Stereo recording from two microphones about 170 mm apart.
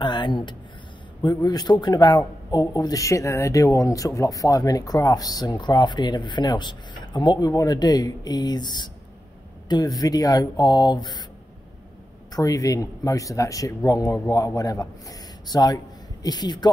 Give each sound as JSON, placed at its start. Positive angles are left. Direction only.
{"t": 0.0, "sound": "speech", "side_deg": 25}
{"t": 12.3, "sound": "speech", "side_deg": 20}